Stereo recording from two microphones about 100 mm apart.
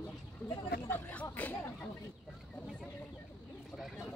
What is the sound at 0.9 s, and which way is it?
Speech, 15° left (ahead or behind).